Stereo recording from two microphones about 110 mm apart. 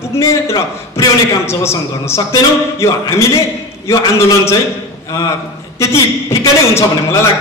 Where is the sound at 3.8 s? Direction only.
25° left (ahead or behind).